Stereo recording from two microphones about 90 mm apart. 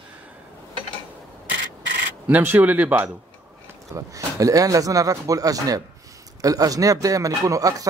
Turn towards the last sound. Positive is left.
turn(degrees=-40)  # may be behind; listen again after turning